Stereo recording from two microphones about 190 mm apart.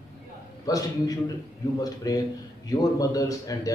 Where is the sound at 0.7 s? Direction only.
20° left (ahead or behind).